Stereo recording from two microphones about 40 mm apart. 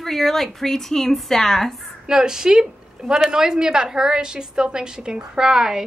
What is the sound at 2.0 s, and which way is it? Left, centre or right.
A woman's voice, centre.